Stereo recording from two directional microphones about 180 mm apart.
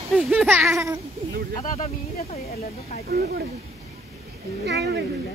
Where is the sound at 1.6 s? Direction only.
35° left (ahead or behind).